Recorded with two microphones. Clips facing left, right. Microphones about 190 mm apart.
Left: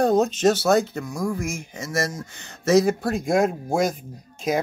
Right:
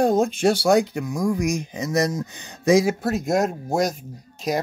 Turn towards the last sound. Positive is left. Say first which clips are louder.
# left 1 dB
turn(degrees=0)  # may be behind; listen again after turning